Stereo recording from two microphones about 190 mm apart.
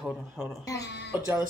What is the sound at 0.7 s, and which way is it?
Speech, 60° left (ahead or behind).